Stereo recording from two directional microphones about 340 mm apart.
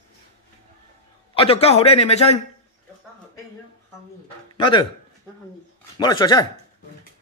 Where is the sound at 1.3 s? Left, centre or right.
Centre.